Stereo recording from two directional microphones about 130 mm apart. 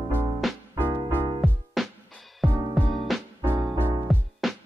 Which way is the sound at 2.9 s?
Centre (ahead or behind).